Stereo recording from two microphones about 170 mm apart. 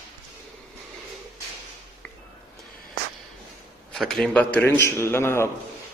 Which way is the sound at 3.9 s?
Centre (ahead or behind).